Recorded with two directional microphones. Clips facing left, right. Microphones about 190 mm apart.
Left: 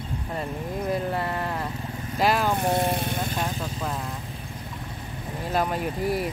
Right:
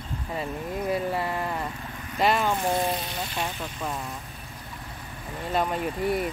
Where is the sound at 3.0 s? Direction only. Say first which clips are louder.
Left 5 dB; 50° left (ahead or behind).